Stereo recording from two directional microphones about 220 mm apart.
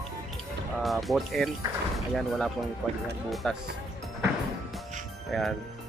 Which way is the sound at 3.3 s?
Centre (ahead or behind).